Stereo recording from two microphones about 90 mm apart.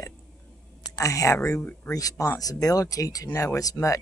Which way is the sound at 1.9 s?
40° left (ahead or behind).